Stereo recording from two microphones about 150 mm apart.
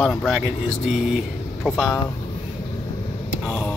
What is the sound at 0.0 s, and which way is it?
Speech, centre (ahead or behind).